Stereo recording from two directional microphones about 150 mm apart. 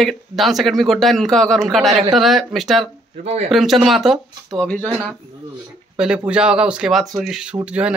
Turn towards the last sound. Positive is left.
turn(degrees=-5)  # may be behind; listen again after turning